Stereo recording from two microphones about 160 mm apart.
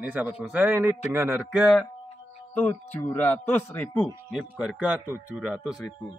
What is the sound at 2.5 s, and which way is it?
Speech, 10° left (ahead or behind).